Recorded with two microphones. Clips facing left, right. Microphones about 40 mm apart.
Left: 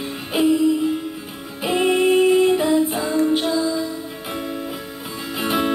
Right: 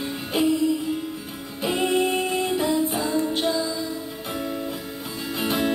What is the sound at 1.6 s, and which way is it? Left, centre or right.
Music, centre.